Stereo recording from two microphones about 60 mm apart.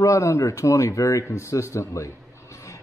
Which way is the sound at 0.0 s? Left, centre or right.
Left.